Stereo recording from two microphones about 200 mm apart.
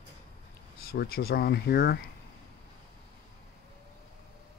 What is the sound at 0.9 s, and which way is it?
Speech, 50° left (ahead or behind).